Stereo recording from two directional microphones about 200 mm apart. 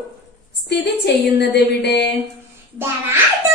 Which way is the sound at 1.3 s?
60° left (ahead or behind).